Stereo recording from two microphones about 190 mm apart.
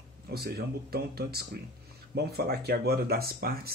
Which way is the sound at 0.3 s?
55° right (ahead or behind).